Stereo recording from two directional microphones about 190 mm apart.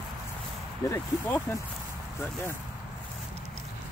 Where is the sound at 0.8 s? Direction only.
15° left (ahead or behind).